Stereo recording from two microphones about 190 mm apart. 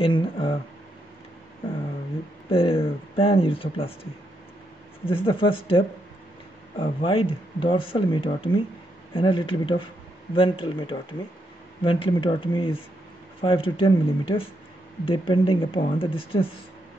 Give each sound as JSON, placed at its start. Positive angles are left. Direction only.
{"t": 0.0, "sound": "speech", "side_deg": 30}
{"t": 2.5, "sound": "speech", "side_deg": 30}